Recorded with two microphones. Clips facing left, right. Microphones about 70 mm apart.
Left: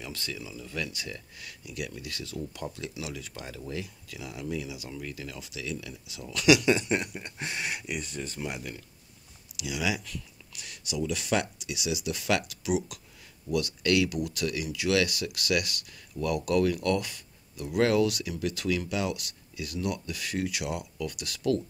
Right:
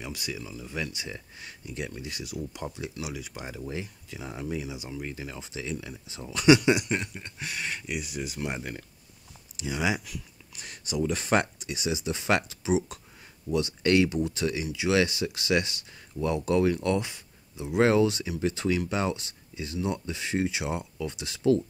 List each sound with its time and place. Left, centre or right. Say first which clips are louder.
0.0 s speech: right 2 dB; centre
6.9 s a sound: left 1 dB; centre
7.3 s speech: even; left
7.8 s speech: right 2 dB; centre
9.6 s speech: right 2 dB; right